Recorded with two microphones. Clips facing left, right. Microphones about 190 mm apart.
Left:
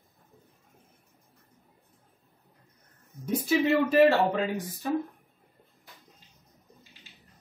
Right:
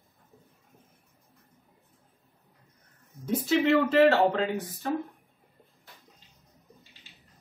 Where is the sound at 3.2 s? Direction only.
10° left (ahead or behind).